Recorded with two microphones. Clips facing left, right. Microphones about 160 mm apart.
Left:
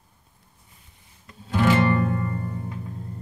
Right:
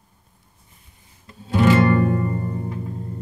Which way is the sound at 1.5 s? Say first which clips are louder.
Right 4 dB; 10° right (ahead or behind).